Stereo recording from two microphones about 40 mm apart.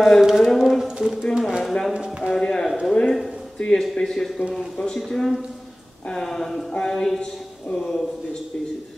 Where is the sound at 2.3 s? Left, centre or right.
Centre.